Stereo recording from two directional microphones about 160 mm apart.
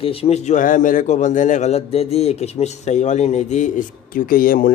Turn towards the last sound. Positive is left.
turn(degrees=65)  # may be behind; listen again after turning